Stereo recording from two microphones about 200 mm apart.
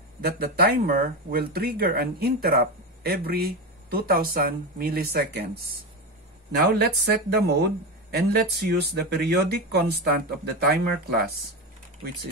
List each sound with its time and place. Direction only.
0.2 s speech: 50° right (ahead or behind)
6.7 s speech: 55° right (ahead or behind)